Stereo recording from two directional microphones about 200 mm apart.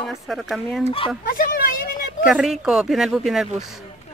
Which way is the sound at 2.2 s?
Centre (ahead or behind).